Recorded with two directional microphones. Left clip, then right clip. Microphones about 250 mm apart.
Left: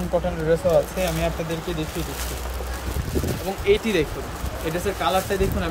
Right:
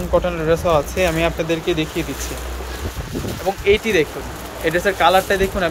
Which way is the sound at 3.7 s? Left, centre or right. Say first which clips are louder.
Right 4 dB; centre.